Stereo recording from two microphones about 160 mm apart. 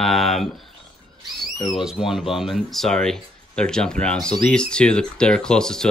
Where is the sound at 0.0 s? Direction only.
Centre (ahead or behind).